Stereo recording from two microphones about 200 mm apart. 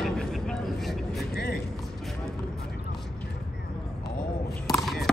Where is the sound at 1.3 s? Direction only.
50° left (ahead or behind).